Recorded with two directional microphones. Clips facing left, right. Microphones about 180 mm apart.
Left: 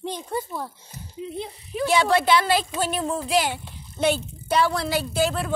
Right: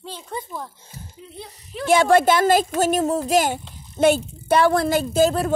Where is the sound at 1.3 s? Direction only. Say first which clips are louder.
Left 7 dB; 20° left (ahead or behind).